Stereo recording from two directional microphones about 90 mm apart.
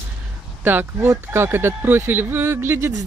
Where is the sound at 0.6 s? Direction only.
25° right (ahead or behind).